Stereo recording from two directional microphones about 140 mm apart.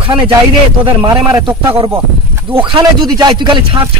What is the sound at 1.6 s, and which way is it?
Speech, 40° right (ahead or behind).